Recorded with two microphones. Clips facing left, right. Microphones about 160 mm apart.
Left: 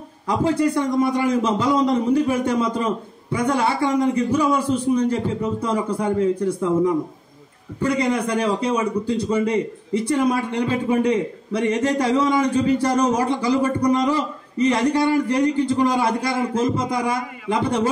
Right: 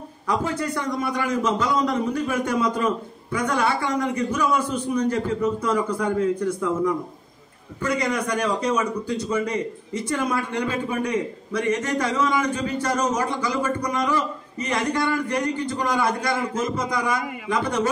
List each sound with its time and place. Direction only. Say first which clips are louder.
0.3 s a man's voice: left 6 dB; 30° left (ahead or behind)